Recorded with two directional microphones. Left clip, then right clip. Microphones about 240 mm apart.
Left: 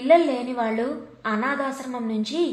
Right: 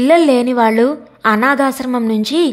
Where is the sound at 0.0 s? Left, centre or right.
Right.